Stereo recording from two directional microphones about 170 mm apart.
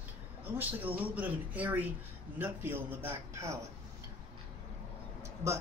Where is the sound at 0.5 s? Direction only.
10° right (ahead or behind).